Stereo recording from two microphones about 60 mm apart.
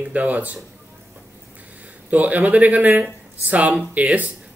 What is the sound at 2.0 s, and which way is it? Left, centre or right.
Speech, right.